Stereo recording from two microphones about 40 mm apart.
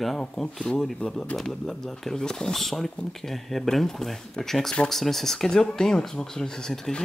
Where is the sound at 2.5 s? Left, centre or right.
Centre.